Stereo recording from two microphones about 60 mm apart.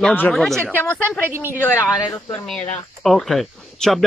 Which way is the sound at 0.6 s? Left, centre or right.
Left.